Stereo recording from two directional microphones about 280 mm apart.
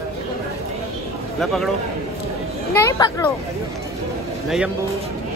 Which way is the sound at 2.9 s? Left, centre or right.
Centre.